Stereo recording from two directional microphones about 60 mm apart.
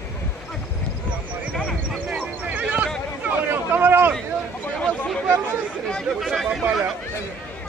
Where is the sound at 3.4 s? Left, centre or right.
Right.